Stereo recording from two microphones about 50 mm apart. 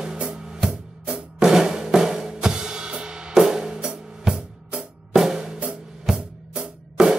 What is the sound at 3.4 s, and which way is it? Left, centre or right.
Music, centre.